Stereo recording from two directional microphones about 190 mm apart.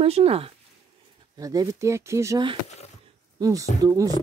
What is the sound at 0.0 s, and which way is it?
Speech, 30° right (ahead or behind).